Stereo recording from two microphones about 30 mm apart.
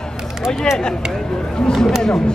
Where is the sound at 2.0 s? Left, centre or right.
Left.